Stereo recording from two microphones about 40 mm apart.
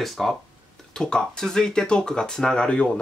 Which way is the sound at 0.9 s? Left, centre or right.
Centre.